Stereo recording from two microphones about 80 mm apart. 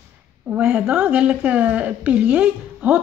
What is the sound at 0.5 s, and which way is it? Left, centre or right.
Speech, centre.